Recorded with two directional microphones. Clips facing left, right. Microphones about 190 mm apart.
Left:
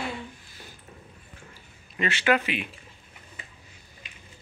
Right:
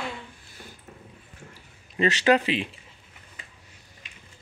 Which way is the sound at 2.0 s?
35° right (ahead or behind).